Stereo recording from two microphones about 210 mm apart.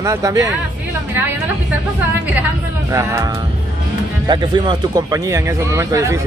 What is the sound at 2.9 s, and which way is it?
Speech, 15° right (ahead or behind).